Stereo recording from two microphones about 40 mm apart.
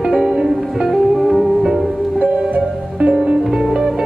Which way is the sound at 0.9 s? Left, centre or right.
Centre.